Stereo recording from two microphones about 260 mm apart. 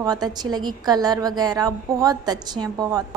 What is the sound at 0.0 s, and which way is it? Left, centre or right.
A woman's voice, centre.